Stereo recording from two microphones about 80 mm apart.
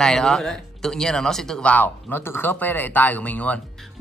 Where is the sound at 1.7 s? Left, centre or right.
Left.